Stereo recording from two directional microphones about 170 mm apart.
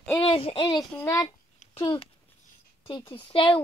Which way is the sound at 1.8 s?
30° left (ahead or behind).